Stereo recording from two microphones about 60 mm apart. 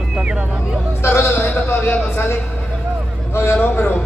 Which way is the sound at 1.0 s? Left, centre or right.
Left.